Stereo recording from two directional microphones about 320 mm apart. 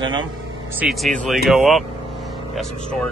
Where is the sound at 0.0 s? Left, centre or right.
Centre.